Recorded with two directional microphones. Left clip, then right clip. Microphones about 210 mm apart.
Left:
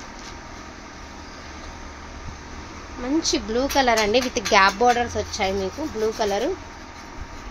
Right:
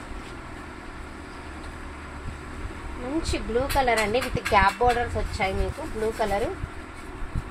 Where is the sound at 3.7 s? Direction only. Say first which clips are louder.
Left 5 dB; 55° left (ahead or behind).